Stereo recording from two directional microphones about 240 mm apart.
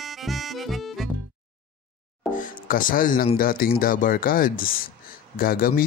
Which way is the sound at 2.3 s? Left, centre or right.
Left.